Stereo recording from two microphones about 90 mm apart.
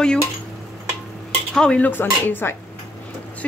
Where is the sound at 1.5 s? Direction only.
10° left (ahead or behind).